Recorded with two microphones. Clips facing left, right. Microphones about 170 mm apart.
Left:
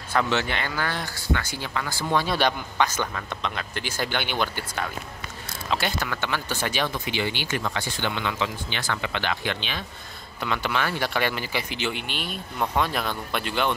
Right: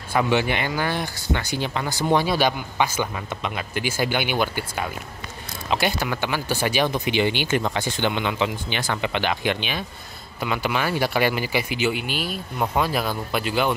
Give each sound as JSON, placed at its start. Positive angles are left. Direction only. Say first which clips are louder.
{"t": 0.1, "sound": "speech", "louder": "right 4 dB", "side_deg": -10}
{"t": 2.2, "sound": "speech", "louder": "right 2 dB", "side_deg": -5}